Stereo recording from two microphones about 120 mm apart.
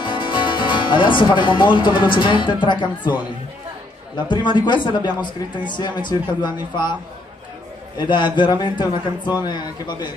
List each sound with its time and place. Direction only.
0.0 s speech: 45° left (ahead or behind)
4.3 s speech: 40° left (ahead or behind)
8.0 s speech: 40° left (ahead or behind)